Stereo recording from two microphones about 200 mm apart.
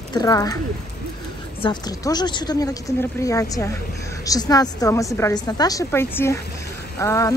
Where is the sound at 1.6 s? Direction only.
20° left (ahead or behind).